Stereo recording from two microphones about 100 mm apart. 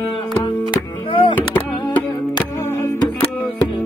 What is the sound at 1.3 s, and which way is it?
Music, 15° left (ahead or behind).